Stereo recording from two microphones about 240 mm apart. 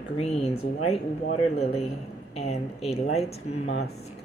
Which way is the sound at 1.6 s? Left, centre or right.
Left.